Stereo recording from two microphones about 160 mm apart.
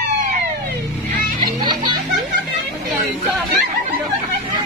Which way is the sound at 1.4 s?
30° right (ahead or behind).